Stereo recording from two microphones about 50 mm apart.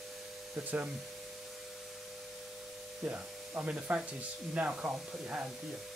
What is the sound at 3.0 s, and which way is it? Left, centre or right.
Speech, right.